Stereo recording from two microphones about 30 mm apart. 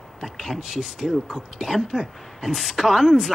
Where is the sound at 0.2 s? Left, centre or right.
Centre.